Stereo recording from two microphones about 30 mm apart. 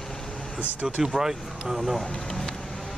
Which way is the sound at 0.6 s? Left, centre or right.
Right.